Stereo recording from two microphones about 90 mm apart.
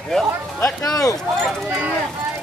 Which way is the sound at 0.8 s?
40° left (ahead or behind).